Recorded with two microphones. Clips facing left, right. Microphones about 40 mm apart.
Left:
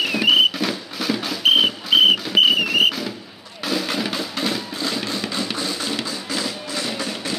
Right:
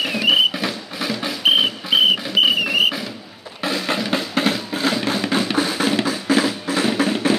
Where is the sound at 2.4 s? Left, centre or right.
Centre.